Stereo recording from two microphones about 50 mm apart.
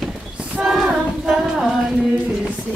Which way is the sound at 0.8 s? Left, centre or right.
Centre.